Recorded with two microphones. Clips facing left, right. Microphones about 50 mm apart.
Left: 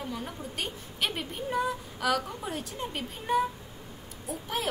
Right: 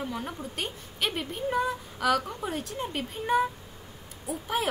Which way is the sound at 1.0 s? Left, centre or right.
Centre.